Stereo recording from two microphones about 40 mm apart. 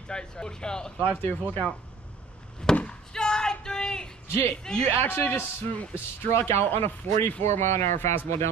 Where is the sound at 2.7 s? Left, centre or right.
Centre.